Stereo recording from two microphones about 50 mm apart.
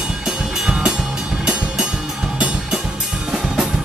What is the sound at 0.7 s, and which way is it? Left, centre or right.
Music, centre.